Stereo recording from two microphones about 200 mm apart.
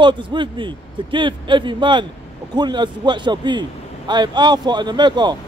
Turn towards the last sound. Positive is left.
turn(degrees=-20)  # may be behind; listen again after turning